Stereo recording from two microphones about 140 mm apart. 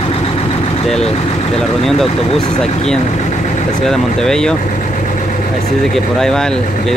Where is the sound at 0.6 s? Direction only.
45° left (ahead or behind).